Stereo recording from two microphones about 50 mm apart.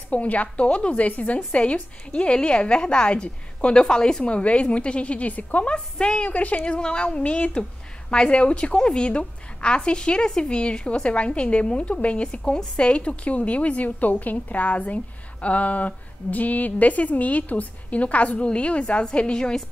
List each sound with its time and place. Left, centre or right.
0.1 s a woman's voice: left
8.1 s a woman's voice: left